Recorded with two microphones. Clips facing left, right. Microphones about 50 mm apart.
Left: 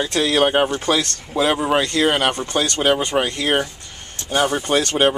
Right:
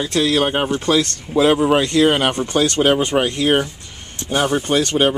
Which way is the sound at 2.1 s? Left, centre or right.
Centre.